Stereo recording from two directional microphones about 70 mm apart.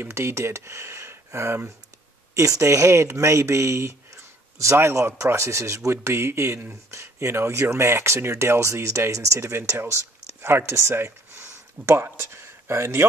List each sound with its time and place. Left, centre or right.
0.0 s speech: right